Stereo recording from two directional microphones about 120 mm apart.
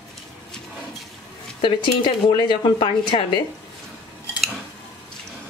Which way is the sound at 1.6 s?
40° left (ahead or behind).